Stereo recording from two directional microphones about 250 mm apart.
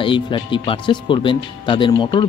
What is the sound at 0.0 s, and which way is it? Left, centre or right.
Speech, centre.